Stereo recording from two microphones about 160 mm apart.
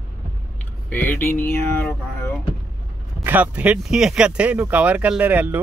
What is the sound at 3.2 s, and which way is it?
Speech, 10° right (ahead or behind).